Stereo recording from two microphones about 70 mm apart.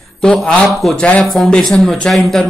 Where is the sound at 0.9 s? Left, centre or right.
Centre.